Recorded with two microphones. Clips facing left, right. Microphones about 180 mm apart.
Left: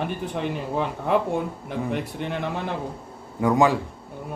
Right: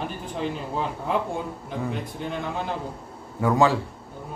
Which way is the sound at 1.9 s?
70° left (ahead or behind).